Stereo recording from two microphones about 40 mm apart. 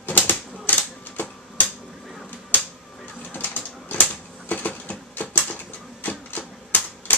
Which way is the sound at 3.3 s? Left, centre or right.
Left.